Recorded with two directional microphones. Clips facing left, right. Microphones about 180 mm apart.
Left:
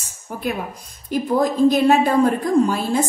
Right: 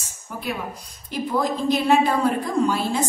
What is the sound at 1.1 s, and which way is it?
A woman's voice, 45° left (ahead or behind).